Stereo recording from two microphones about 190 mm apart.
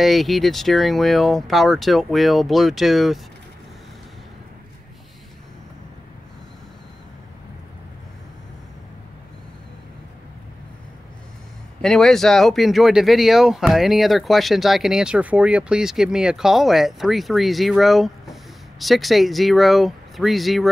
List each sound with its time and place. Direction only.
0.0 s speech: centre (ahead or behind)
11.8 s speech: centre (ahead or behind)